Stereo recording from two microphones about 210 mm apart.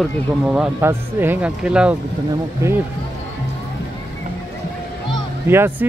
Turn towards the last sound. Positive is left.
turn(degrees=-10)  # may be behind; listen again after turning